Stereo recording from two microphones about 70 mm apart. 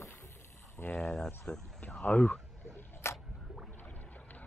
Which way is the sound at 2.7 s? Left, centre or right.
Left.